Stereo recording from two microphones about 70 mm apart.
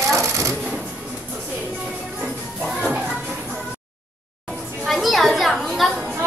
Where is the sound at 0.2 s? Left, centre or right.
Right.